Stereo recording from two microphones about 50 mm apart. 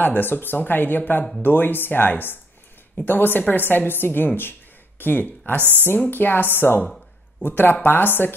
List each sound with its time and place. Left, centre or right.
0.0 s a woman's voice: left
4.4 s a sound: left
5.6 s speech: right
6.0 s speech: left